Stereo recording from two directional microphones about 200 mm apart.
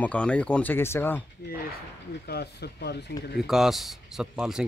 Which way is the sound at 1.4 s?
50° left (ahead or behind).